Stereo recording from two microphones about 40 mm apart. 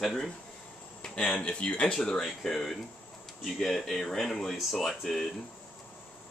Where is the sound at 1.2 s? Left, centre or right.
Left.